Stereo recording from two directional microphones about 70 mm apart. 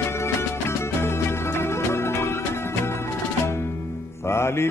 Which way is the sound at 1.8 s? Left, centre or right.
Left.